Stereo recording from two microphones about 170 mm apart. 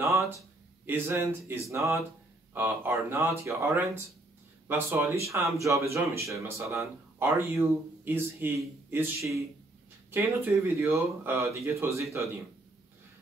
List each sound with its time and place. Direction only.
0.8 s speech: 10° right (ahead or behind)